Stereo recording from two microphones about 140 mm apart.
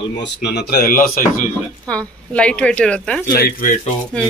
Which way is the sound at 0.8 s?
80° left.